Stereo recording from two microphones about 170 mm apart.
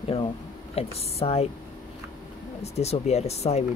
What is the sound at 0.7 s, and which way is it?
Speech, 35° left (ahead or behind).